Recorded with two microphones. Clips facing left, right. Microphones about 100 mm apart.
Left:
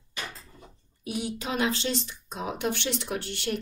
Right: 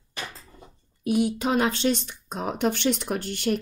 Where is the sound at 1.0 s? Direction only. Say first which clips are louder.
Right 9 dB; 50° right (ahead or behind).